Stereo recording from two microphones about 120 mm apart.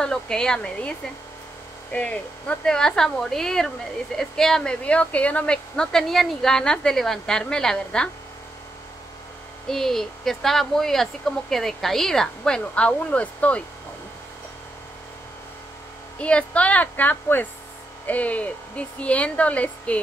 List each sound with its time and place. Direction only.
0.0 s a woman's voice: 5° left (ahead or behind)
9.7 s speech: 5° left (ahead or behind)
16.2 s a woman's voice: 10° left (ahead or behind)